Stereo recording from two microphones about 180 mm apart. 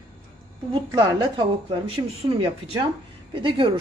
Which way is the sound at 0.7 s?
25° right (ahead or behind).